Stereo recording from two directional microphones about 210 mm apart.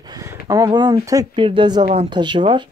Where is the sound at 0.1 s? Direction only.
15° right (ahead or behind).